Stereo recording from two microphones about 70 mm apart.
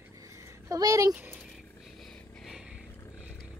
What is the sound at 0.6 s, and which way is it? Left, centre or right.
Speech, right.